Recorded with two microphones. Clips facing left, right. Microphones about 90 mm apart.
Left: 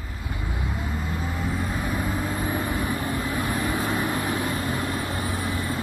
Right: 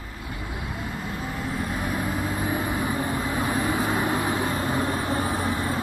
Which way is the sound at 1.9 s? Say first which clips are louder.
Even; 15° right (ahead or behind).